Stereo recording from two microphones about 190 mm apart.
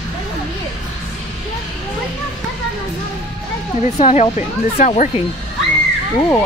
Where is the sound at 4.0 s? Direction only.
35° left (ahead or behind).